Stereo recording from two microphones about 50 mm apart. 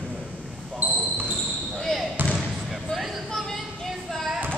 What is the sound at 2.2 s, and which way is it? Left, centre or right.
Basketball bounce, right.